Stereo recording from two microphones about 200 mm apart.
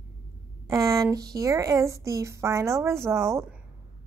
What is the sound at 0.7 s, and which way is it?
A woman's voice, 15° right (ahead or behind).